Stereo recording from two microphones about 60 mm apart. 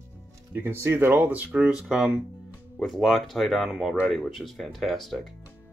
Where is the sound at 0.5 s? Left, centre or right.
Right.